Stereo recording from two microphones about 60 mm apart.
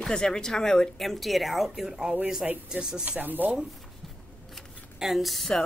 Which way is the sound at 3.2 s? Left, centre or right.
Right.